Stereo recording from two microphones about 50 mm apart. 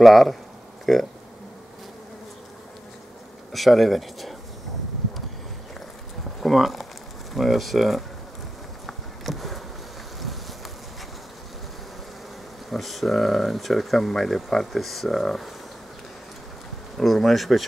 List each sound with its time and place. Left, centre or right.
0.0 s speech: centre
3.5 s speech: centre
6.4 s speech: centre
8.8 s insect: centre
12.6 s speech: centre
16.9 s speech: centre